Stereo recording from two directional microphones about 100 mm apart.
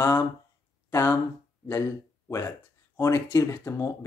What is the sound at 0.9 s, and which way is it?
Speech, 25° left (ahead or behind).